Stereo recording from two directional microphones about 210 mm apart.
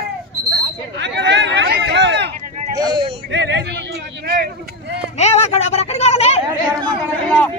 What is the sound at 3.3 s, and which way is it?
Speech, 55° right (ahead or behind).